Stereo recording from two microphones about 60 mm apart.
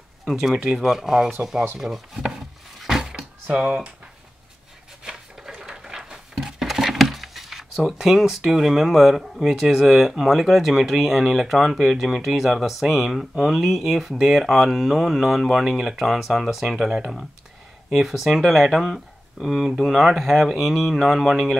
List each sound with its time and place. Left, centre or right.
0.7 s speech: centre
3.0 s drawer open or close: centre
5.0 s a sound: centre
12.8 s speech: centre